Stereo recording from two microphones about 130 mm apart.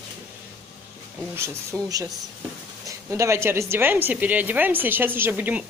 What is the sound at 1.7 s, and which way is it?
A woman's voice, 20° right (ahead or behind).